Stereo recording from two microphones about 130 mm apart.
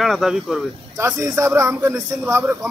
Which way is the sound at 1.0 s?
25° right (ahead or behind).